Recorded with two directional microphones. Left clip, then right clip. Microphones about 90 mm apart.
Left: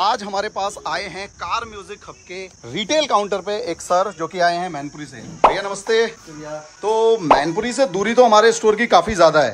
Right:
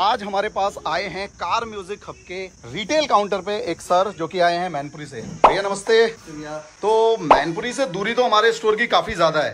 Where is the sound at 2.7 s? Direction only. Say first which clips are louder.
Left 1 dB; 65° left (ahead or behind); by 3.4 s 45° left (ahead or behind).